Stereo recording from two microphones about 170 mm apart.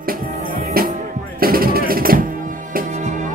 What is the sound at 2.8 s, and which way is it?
Music, 45° right (ahead or behind).